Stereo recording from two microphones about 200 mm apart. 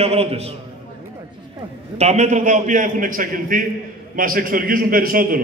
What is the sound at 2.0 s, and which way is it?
A man's voice, 35° right (ahead or behind).